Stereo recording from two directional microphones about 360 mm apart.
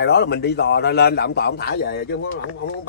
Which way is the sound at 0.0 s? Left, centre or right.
Left.